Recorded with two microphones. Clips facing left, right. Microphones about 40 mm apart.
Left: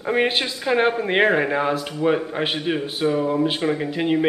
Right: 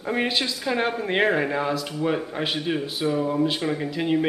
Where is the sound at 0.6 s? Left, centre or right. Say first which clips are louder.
Left 8 dB; centre.